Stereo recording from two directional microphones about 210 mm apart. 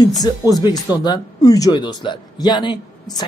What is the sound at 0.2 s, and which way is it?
Speech, 20° left (ahead or behind).